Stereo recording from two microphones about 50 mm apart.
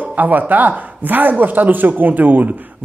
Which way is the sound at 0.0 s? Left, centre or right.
Right.